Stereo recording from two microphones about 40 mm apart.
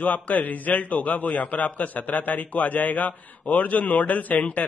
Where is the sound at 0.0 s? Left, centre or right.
Left.